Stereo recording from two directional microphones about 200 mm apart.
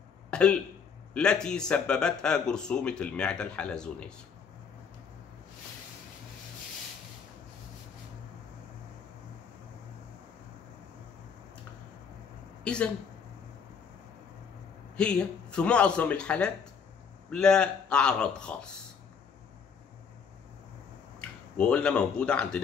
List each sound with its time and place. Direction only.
0.3 s a sound: 5° left (ahead or behind)
1.1 s speech: 5° left (ahead or behind)
12.6 s speech: 5° left (ahead or behind)
15.0 s speech: 5° left (ahead or behind)
21.5 s speech: 5° left (ahead or behind)